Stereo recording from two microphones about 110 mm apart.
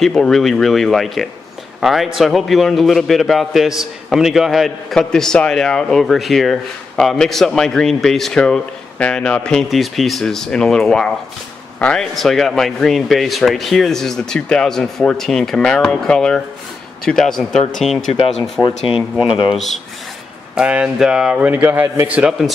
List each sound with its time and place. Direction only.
0.0 s a man's voice: 5° left (ahead or behind)
18.6 s speech: 15° left (ahead or behind)
19.2 s speech: 50° left (ahead or behind)
19.5 s a man's voice: centre (ahead or behind)
20.5 s a man's voice: 10° right (ahead or behind)